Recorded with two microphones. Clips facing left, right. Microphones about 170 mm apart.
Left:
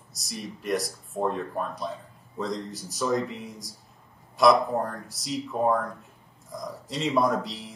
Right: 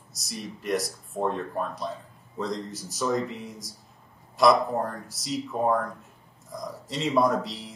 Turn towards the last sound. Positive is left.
turn(degrees=0)  # may be behind; listen again after turning